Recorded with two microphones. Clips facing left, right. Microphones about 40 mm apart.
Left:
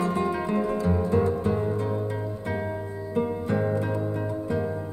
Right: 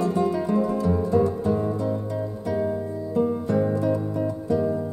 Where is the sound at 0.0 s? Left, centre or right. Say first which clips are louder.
Right 3 dB; left.